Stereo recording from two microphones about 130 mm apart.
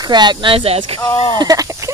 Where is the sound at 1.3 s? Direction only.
30° right (ahead or behind).